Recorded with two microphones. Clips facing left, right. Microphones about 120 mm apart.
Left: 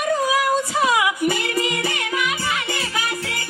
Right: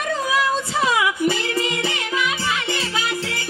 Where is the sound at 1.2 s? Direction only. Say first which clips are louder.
Even; 25° right (ahead or behind).